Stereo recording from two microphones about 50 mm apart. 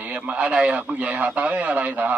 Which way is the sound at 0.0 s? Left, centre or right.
Right.